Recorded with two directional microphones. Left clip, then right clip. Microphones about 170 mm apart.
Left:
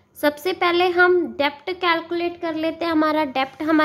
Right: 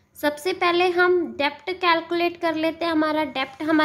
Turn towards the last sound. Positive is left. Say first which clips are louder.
# left 3 dB
turn(degrees=20)  # may be behind; listen again after turning